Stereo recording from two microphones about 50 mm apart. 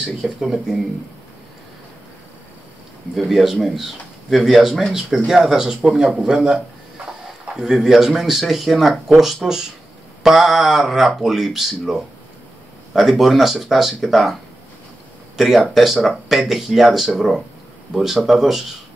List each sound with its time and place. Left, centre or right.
0.2 s speech: centre
3.2 s speech: centre
15.3 s speech: centre